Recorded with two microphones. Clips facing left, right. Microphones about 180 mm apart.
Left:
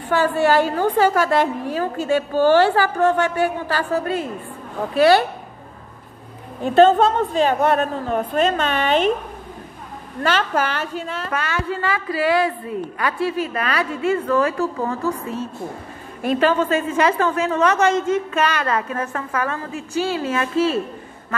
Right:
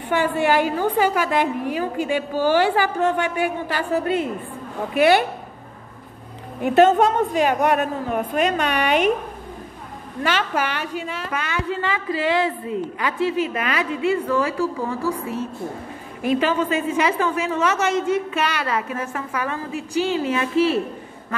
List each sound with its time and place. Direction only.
0.1 s a woman's voice: 15° right (ahead or behind)
6.6 s a woman's voice: 15° right (ahead or behind)
10.2 s a woman's voice: 10° right (ahead or behind)